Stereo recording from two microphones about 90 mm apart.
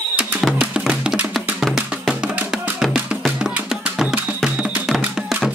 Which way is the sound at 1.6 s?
Centre (ahead or behind).